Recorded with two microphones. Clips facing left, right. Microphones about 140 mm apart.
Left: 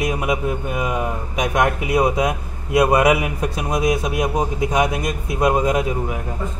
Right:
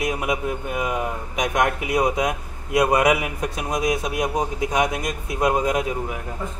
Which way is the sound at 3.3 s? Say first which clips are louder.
Left 3 dB; 5° left (ahead or behind).